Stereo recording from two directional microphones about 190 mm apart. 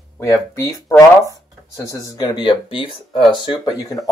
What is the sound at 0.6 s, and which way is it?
Speech, 20° left (ahead or behind).